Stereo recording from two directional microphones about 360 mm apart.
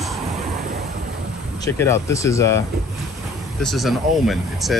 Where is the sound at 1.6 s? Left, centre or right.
Centre.